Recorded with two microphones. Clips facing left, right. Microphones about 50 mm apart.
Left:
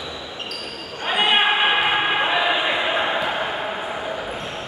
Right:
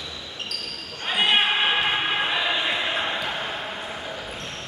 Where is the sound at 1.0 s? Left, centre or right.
Centre.